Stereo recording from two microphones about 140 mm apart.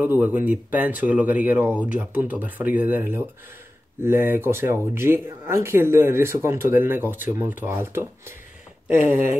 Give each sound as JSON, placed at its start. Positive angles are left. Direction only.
{"t": 0.0, "sound": "speech", "side_deg": -15}